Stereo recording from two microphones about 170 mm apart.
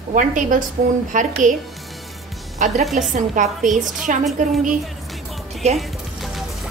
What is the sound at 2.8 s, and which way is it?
Speech, centre (ahead or behind).